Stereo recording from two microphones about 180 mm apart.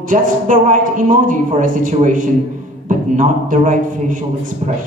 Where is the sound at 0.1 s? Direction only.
45° right (ahead or behind).